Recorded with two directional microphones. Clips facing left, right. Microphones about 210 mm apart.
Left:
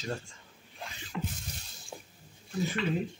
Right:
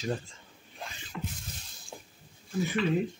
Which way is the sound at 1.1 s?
20° left (ahead or behind).